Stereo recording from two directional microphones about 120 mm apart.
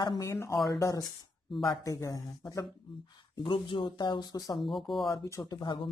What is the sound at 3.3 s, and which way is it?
Speech, 45° left (ahead or behind).